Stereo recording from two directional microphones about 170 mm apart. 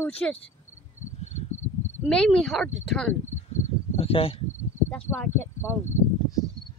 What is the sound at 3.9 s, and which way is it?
Speech, 35° left (ahead or behind).